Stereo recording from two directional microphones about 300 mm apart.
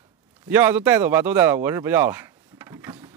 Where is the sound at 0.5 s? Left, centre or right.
Centre.